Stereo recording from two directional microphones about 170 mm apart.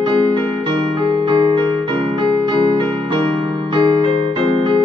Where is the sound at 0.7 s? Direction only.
30° right (ahead or behind).